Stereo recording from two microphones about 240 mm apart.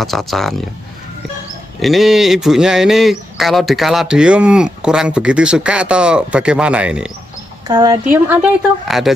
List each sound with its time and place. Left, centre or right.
0.0 s speech: centre
1.8 s speech: centre
7.6 s a woman's voice: centre